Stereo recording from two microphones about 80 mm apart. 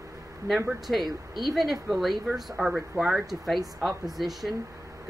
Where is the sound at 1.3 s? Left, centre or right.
Centre.